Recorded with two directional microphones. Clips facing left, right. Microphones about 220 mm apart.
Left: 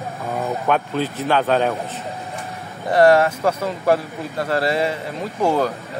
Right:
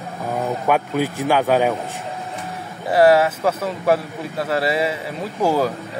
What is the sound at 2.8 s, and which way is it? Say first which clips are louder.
A man's voice: even; 5° right (ahead or behind).